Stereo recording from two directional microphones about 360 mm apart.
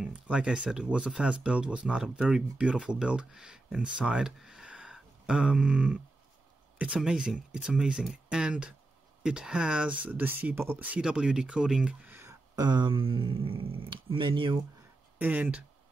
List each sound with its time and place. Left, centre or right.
0.0 s speech: centre